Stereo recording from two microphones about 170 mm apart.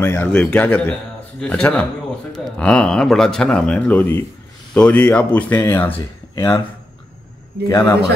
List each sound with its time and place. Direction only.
0.0 s speech: 10° left (ahead or behind)
7.6 s a man's voice: 20° left (ahead or behind)